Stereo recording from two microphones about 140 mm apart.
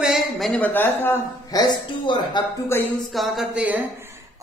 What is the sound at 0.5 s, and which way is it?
Speech, 15° left (ahead or behind).